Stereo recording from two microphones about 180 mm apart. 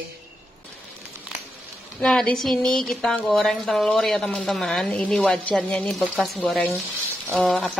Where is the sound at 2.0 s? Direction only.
5° left (ahead or behind).